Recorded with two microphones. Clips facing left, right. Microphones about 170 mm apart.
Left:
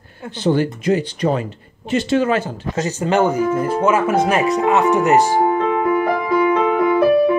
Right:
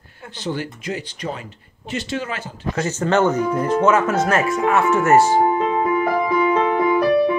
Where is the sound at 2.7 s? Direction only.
15° left (ahead or behind).